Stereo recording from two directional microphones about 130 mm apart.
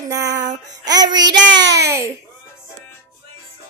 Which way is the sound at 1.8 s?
25° right (ahead or behind).